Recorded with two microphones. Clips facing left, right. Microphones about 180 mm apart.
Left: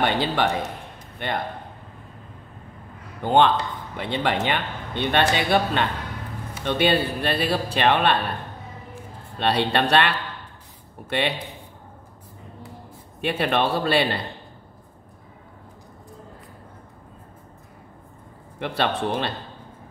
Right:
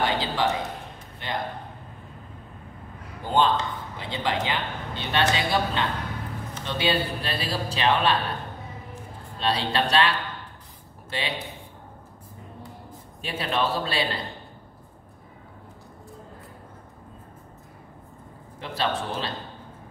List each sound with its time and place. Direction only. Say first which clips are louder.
0.0 s a man's voice: left 3 dB; 60° left (ahead or behind)
3.2 s speech: left 4 dB; 65° left (ahead or behind)
9.4 s a man's voice: left 4 dB; 60° left (ahead or behind)
13.2 s speech: left 5 dB; 60° left (ahead or behind)
18.6 s speech: left 4 dB; 60° left (ahead or behind)